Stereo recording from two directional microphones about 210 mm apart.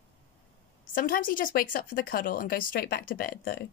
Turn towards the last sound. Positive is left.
turn(degrees=45)  # may be behind; listen again after turning